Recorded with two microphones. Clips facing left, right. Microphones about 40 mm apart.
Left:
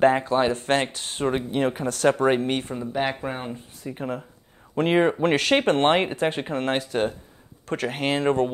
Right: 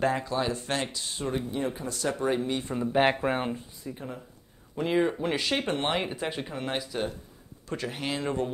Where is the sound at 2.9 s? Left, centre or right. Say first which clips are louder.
Right 3 dB; centre.